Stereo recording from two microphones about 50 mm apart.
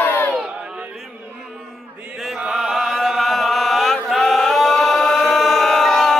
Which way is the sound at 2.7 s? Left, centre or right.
Centre.